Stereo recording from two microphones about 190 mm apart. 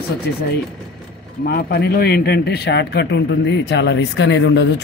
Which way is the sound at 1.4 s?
55° left (ahead or behind).